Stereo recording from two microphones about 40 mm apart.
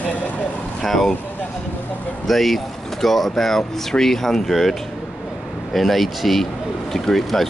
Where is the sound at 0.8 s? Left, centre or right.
Centre.